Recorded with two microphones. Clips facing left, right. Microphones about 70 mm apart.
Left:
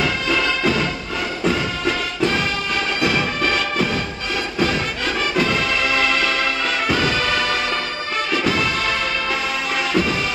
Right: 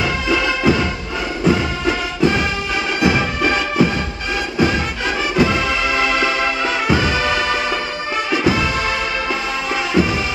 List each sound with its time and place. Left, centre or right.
0.3 s music: centre
5.3 s music: centre
10.0 s music: centre